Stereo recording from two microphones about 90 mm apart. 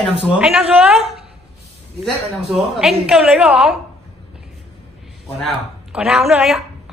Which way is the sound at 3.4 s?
10° right (ahead or behind).